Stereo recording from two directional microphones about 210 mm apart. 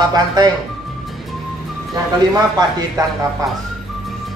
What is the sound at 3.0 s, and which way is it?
Speech, 20° right (ahead or behind).